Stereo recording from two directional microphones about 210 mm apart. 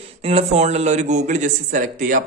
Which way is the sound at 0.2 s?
30° right (ahead or behind).